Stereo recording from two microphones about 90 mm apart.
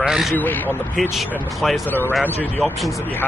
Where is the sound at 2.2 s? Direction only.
15° left (ahead or behind).